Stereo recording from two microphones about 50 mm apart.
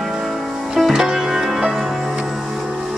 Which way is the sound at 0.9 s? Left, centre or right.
Centre.